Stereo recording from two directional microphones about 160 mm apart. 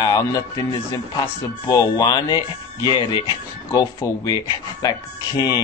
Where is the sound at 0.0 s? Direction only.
25° left (ahead or behind).